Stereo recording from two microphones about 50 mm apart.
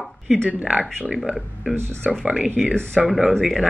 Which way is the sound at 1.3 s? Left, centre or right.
Centre.